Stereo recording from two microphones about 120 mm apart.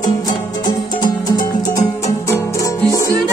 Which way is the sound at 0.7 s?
35° left (ahead or behind).